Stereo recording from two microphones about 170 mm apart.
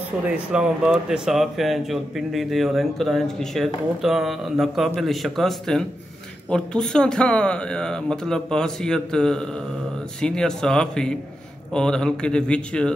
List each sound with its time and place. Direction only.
0.3 s speech: 5° right (ahead or behind)